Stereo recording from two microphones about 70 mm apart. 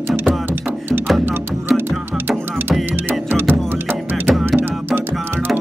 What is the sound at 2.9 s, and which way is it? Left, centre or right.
Music, right.